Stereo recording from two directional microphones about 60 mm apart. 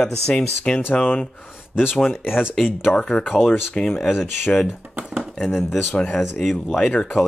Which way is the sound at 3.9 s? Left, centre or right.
Centre.